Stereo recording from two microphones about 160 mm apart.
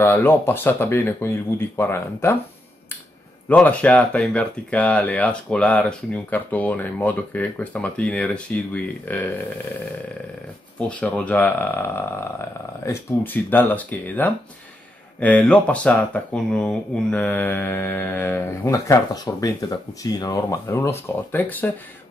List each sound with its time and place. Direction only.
0.0 s speech: 15° left (ahead or behind)
3.4 s speech: 10° left (ahead or behind)
10.8 s speech: 10° left (ahead or behind)